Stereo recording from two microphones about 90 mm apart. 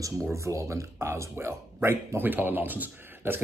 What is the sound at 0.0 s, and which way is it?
Speech, 35° right (ahead or behind).